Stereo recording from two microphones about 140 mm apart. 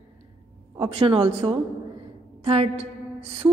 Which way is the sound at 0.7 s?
45° right (ahead or behind).